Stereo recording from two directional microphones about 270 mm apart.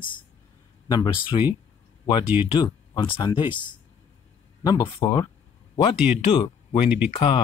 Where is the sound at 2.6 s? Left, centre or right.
Centre.